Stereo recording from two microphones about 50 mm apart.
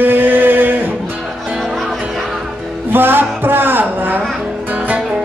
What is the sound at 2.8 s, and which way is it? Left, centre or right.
Music, right.